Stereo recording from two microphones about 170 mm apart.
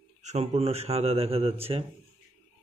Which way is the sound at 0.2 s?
45° right (ahead or behind).